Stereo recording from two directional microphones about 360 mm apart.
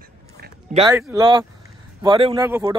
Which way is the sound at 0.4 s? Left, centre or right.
Centre.